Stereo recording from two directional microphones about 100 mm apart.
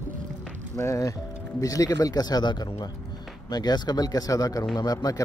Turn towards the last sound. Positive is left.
turn(degrees=40)  # may be behind; listen again after turning